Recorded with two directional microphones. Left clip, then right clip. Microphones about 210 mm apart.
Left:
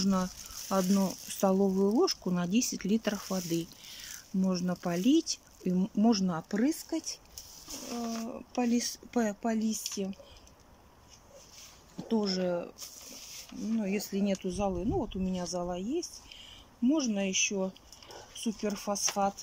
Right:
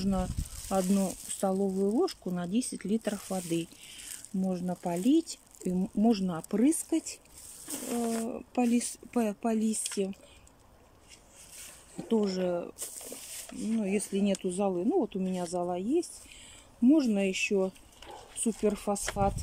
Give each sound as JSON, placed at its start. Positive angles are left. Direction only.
{"t": 0.0, "sound": "speech", "side_deg": 0}
{"t": 7.6, "sound": "a sound", "side_deg": -40}
{"t": 8.3, "sound": "speech", "side_deg": -15}
{"t": 12.0, "sound": "speech", "side_deg": -10}
{"t": 12.8, "sound": "a sound", "side_deg": -40}
{"t": 13.7, "sound": "speech", "side_deg": -15}